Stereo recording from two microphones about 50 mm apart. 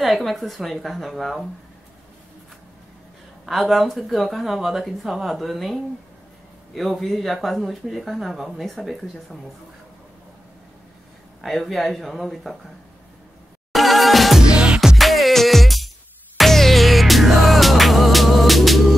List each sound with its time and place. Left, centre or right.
0.0 s speech: centre
3.4 s speech: centre
11.4 s speech: centre
13.7 s music: centre
14.5 s music: right
15.0 s music: centre